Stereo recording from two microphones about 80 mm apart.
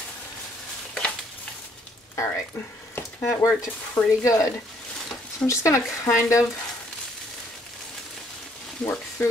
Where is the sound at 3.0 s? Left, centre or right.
Left.